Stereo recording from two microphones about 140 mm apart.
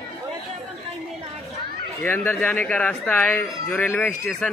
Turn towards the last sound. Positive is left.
turn(degrees=5)  # may be behind; listen again after turning